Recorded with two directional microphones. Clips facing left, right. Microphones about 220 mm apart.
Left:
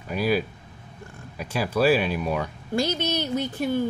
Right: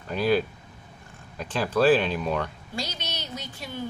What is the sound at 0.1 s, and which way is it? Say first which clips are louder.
Speech: right 1 dB; 10° left (ahead or behind).